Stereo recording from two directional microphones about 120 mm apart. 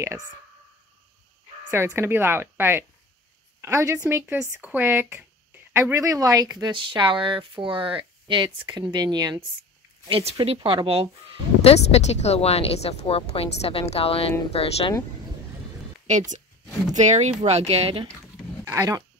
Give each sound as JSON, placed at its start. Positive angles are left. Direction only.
{"t": 2.0, "sound": "speech", "side_deg": -20}
{"t": 10.0, "sound": "speech", "side_deg": -50}
{"t": 11.6, "sound": "speech", "side_deg": 60}
{"t": 16.1, "sound": "speech", "side_deg": -90}
{"t": 18.6, "sound": "speech", "side_deg": -30}